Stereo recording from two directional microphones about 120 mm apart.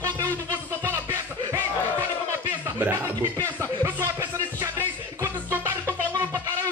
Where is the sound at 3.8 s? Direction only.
25° right (ahead or behind).